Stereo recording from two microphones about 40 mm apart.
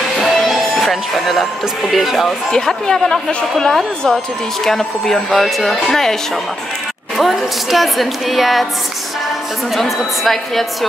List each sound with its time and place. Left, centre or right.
0.2 s speech: centre
2.2 s speech: centre
7.2 s speech: centre
9.8 s speech: centre